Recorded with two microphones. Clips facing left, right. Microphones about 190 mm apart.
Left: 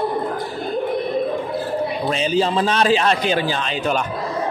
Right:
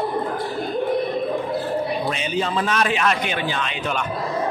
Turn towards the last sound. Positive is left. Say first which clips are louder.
# left 4 dB
turn(degrees=35)  # may be behind; listen again after turning